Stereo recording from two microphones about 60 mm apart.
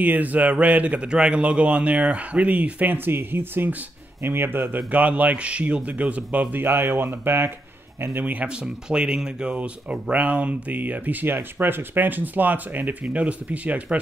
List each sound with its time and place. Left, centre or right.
0.0 s speech: right
4.7 s speech: right
6.5 s speech: right
8.5 s speech: centre